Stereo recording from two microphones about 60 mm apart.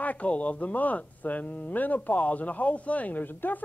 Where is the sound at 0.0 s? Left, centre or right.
Left.